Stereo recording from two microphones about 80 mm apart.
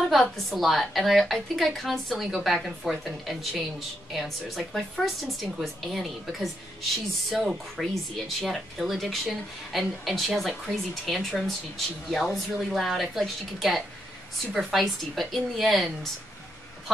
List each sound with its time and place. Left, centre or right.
0.0 s speech: centre